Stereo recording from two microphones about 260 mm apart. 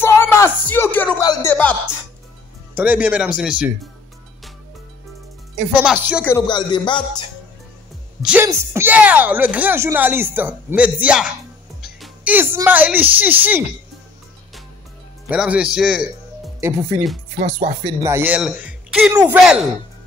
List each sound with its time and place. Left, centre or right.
0.0 s speech: centre
2.7 s speech: centre
5.8 s speech: centre
6.3 s a man's voice: centre
8.2 s speech: centre
15.2 s speech: centre
17.4 s speech: right
18.0 s speech: centre